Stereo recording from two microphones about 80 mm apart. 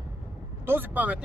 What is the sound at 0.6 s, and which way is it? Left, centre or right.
Speech, right.